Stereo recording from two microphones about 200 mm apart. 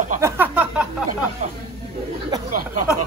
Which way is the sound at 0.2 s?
10° right (ahead or behind).